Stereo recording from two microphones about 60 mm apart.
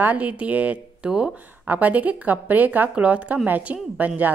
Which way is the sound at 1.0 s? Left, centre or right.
Centre.